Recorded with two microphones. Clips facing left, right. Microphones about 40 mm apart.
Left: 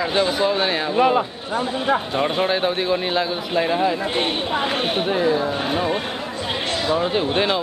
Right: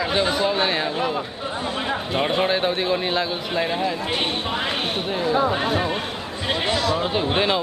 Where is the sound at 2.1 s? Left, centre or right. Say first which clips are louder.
Left 1 dB; centre.